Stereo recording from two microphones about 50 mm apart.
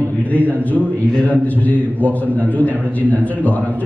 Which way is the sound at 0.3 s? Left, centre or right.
Left.